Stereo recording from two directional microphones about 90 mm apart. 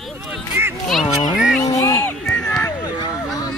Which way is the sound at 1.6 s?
40° left (ahead or behind).